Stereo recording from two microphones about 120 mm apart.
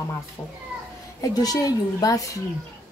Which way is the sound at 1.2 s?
30° left (ahead or behind).